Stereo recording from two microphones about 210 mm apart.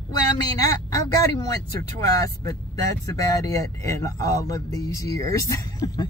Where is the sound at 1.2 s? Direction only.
15° left (ahead or behind).